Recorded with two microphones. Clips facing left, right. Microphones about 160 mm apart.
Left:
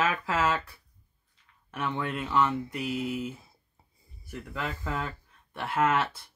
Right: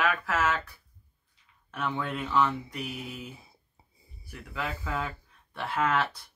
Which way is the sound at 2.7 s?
5° left (ahead or behind).